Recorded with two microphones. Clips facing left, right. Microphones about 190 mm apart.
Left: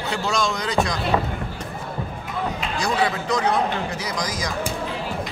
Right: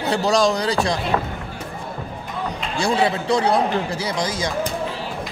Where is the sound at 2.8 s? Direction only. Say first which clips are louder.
Right 4 dB; 30° right (ahead or behind).